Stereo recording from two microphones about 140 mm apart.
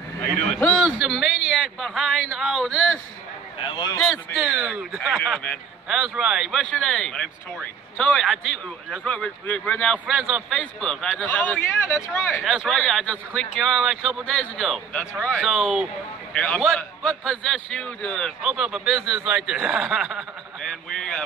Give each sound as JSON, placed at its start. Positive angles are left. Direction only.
{"t": 0.7, "sound": "a man's voice", "side_deg": -5}
{"t": 3.6, "sound": "a man's voice", "side_deg": 35}
{"t": 4.0, "sound": "speech", "side_deg": 0}
{"t": 10.0, "sound": "a man's voice", "side_deg": -5}
{"t": 10.5, "sound": "a man's voice", "side_deg": 5}
{"t": 16.3, "sound": "speech", "side_deg": 5}